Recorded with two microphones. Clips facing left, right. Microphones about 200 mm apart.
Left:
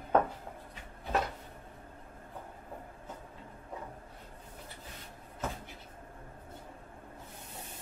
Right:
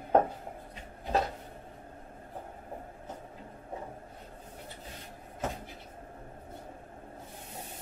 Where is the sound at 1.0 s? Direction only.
30° right (ahead or behind).